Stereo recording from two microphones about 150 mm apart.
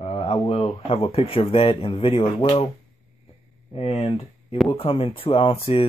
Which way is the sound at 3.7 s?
40° left (ahead or behind).